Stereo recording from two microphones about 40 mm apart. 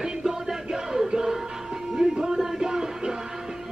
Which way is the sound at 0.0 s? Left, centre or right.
Centre.